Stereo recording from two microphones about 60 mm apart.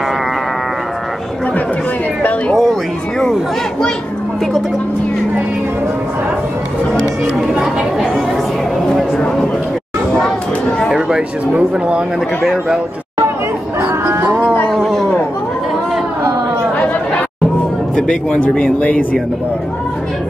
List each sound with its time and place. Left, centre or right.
2.5 s speech: centre
7.5 s speech: centre
11.0 s speech: centre
12.4 s speech: centre
13.7 s chatter: right
14.7 s a sound: centre
17.9 s speech: centre